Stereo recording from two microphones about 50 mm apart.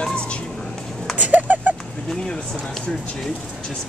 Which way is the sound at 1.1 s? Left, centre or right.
Right.